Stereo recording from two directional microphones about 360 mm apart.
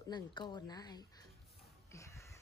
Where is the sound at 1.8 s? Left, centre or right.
Centre.